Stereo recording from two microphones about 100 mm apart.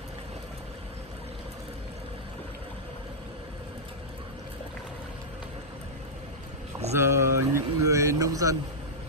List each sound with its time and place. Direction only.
6.9 s vehicle: 30° right (ahead or behind)